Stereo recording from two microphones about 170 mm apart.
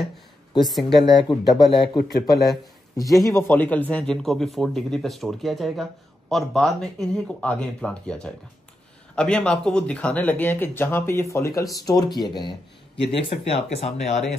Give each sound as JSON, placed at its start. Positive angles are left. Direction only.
{"t": 0.7, "sound": "speech", "side_deg": 0}
{"t": 1.0, "sound": "speech", "side_deg": 25}
{"t": 3.3, "sound": "speech", "side_deg": 15}